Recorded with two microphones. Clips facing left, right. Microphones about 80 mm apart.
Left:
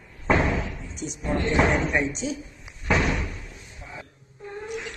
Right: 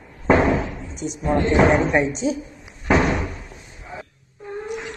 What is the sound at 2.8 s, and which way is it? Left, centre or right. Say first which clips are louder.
Slam: right 5 dB; right.